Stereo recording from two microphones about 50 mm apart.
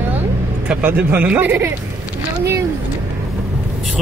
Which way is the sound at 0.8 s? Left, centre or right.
Right.